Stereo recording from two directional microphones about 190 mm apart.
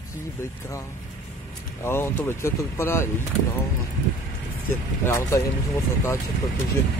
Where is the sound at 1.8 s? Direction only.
15° left (ahead or behind).